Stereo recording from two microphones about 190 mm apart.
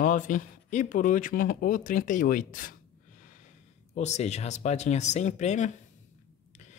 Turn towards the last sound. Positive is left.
turn(degrees=40)  # may be behind; listen again after turning